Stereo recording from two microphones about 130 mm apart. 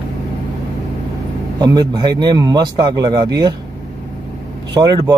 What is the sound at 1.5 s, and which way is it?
Speech, 30° right (ahead or behind).